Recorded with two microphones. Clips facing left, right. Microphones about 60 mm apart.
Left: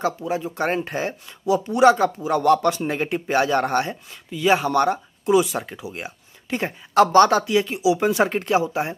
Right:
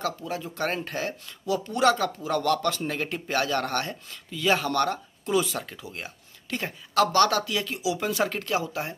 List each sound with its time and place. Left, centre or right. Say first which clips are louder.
0.0 s speech: left 7 dB; left